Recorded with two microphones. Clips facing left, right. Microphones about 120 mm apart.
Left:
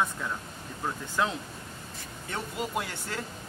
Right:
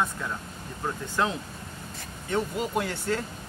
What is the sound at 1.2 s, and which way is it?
Speech, 5° left (ahead or behind).